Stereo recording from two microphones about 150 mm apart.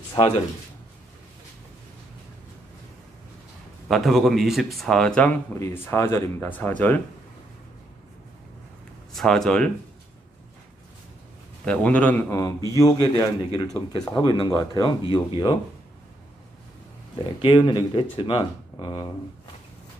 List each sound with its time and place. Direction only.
3.9 s speech: centre (ahead or behind)
9.1 s speech: 5° left (ahead or behind)
11.6 s speech: 10° left (ahead or behind); by 15.5 s 30° left (ahead or behind)
17.4 s speech: 35° left (ahead or behind)